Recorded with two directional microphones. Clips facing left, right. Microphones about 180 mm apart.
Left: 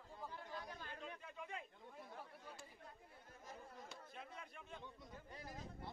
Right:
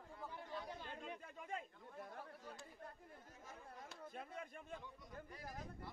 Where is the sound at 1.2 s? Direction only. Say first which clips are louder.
Right 2 dB; 45° right (ahead or behind).